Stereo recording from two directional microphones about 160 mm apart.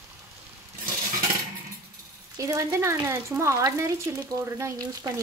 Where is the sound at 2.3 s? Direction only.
20° right (ahead or behind).